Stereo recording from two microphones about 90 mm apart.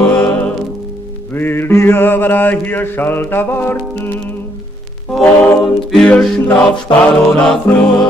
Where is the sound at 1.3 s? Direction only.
25° left (ahead or behind).